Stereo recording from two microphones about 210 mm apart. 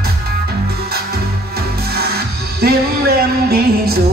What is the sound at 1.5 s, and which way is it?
Music, 50° right (ahead or behind).